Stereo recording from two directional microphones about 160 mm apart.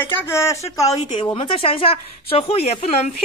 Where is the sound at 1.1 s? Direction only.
30° left (ahead or behind).